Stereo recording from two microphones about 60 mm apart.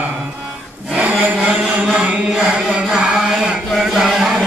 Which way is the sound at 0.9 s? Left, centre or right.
Right.